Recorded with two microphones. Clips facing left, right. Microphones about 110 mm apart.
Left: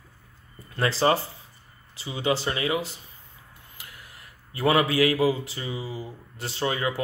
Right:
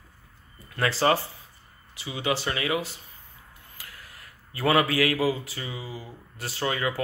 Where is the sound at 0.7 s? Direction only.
25° left (ahead or behind).